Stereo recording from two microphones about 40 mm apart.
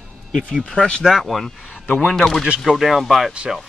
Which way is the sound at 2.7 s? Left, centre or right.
Centre.